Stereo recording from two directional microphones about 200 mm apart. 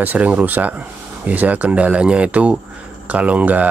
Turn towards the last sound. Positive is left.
turn(degrees=-5)  # may be behind; listen again after turning